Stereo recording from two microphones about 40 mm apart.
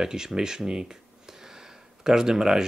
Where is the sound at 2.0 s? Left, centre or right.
Centre.